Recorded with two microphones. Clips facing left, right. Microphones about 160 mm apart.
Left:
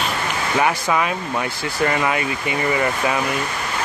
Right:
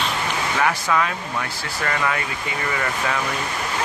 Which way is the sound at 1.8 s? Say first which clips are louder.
Left 4 dB; 20° left (ahead or behind).